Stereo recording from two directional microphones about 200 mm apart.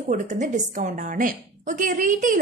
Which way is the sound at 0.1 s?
40° right (ahead or behind).